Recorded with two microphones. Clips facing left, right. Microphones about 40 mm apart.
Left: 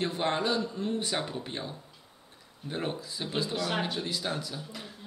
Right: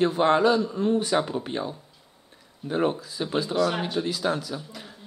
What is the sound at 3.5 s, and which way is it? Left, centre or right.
Speech, centre.